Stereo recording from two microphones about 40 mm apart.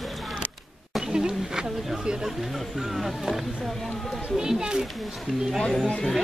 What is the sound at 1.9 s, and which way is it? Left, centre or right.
Speech, centre.